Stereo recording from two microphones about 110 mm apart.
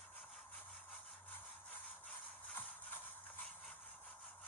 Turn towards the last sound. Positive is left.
turn(degrees=15)  # may be behind; listen again after turning